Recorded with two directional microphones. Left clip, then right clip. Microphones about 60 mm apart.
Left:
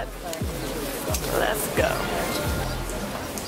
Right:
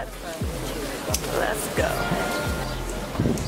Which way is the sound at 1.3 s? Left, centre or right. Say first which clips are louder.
Left 2 dB; centre.